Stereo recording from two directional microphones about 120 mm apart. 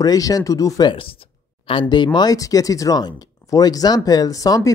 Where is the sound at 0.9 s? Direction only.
50° left (ahead or behind); by 4.7 s 30° left (ahead or behind).